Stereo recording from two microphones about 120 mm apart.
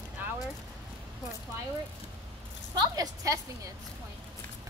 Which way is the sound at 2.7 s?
35° right (ahead or behind).